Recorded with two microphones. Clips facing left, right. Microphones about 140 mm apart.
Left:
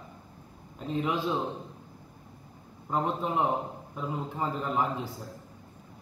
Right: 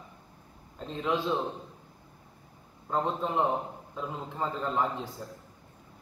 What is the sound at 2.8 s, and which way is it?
A man's voice, 5° left (ahead or behind).